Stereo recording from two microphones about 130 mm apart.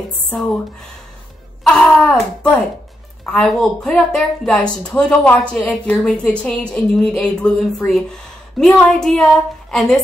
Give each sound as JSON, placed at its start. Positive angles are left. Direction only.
{"t": 1.6, "sound": "a woman's voice", "side_deg": 5}